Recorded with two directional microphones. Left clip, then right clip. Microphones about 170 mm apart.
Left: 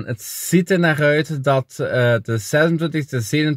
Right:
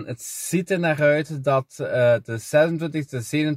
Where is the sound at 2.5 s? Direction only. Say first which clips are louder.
Left 1 dB; 20° left (ahead or behind).